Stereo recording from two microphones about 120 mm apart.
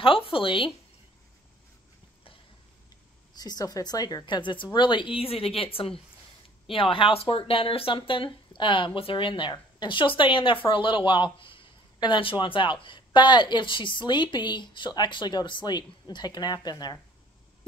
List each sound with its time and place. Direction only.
0.0 s a woman's voice: 50° left (ahead or behind)
3.3 s a woman's voice: 30° left (ahead or behind)